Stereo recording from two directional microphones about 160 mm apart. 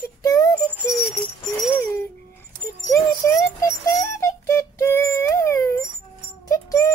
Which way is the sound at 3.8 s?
15° left (ahead or behind).